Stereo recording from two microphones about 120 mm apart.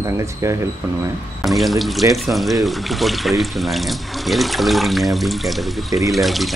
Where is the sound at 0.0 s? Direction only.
25° right (ahead or behind).